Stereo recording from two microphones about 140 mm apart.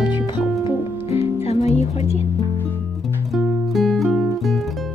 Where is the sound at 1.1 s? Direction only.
50° left (ahead or behind).